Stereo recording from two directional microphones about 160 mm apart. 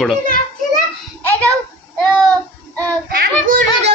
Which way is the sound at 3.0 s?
65° right (ahead or behind).